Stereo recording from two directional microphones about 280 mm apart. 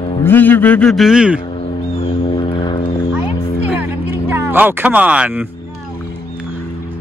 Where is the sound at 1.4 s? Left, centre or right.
Left.